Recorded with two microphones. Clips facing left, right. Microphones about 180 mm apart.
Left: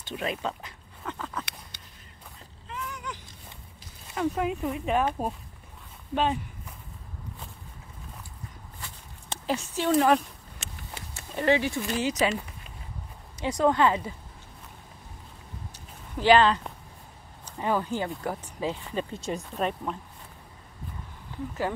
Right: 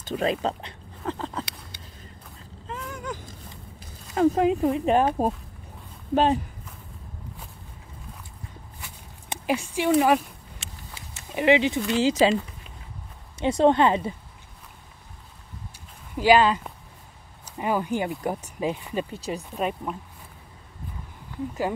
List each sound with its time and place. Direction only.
0.0 s speech: 35° right (ahead or behind)
2.7 s a sound: 45° right (ahead or behind)
4.1 s speech: 40° right (ahead or behind)
8.8 s a sound: 10° right (ahead or behind)
11.1 s speech: 15° right (ahead or behind)
13.4 s speech: 25° right (ahead or behind)
16.2 s speech: 10° right (ahead or behind)
19.2 s speech: centre (ahead or behind)